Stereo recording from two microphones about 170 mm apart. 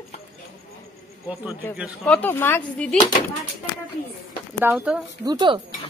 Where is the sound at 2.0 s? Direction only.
10° left (ahead or behind).